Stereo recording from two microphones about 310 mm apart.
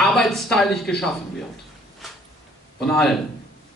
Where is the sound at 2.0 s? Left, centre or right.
Centre.